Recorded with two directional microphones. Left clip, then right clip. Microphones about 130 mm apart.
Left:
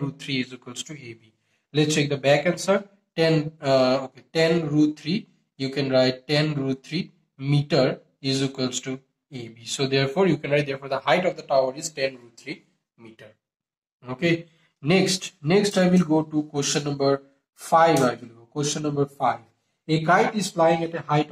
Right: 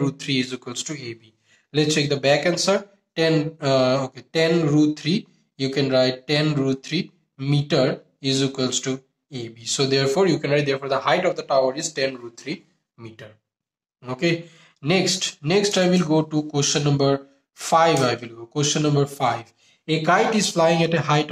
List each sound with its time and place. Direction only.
0.0 s a man's voice: 35° right (ahead or behind)
12.5 s a sound: 20° right (ahead or behind)
14.0 s speech: 35° right (ahead or behind)